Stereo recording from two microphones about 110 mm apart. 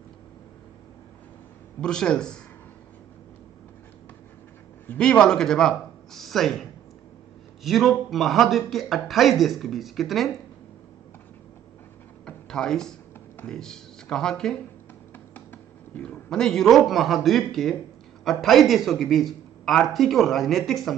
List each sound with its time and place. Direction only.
1.8 s a man's voice: 5° left (ahead or behind)
4.8 s a man's voice: 10° left (ahead or behind)
12.3 s a sound: 5° left (ahead or behind)
13.5 s a man's voice: 5° left (ahead or behind)
15.1 s music: 20° left (ahead or behind)
16.0 s a man's voice: 5° left (ahead or behind)